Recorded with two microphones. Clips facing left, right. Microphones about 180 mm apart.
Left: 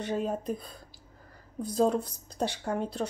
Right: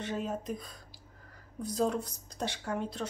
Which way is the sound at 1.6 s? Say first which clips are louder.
Left 5 dB; 30° left (ahead or behind).